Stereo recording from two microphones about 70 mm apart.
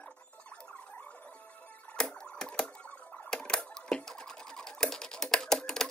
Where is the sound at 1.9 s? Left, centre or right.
Centre.